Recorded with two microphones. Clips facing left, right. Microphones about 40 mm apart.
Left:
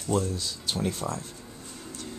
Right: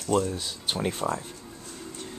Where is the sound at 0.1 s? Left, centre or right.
Right.